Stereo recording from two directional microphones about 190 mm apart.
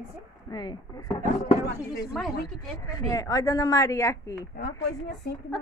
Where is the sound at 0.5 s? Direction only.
20° left (ahead or behind).